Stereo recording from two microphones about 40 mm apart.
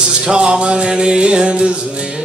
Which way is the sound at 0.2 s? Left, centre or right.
Centre.